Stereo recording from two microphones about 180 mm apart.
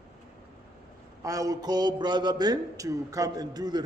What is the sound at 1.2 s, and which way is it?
A man's voice, 20° right (ahead or behind).